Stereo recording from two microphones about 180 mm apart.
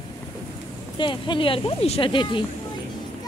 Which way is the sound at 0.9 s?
25° left (ahead or behind).